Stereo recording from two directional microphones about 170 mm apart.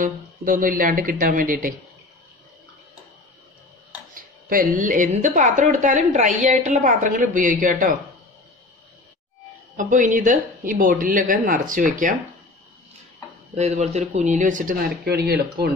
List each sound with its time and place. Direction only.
0.0 s a woman's voice: 55° right (ahead or behind)
4.1 s a woman's voice: 55° right (ahead or behind)
9.8 s a woman's voice: 50° right (ahead or behind)
13.6 s a woman's voice: 40° right (ahead or behind); by 15.7 s 70° right (ahead or behind)